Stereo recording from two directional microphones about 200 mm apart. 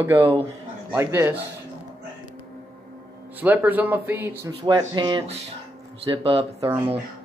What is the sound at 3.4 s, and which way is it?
Speech, 10° right (ahead or behind).